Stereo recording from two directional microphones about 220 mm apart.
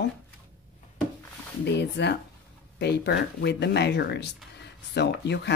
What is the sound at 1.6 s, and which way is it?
Speech, 50° left (ahead or behind).